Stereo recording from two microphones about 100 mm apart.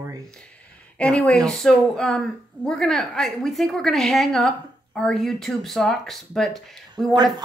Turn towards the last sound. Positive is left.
turn(degrees=0)  # may be behind; listen again after turning